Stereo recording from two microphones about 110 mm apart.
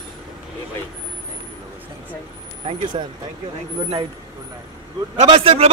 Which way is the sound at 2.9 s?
55° right (ahead or behind).